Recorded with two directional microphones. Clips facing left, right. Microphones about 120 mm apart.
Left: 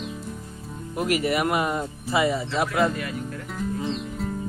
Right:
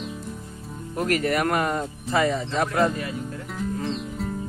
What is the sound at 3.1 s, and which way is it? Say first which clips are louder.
Music: even; centre (ahead or behind).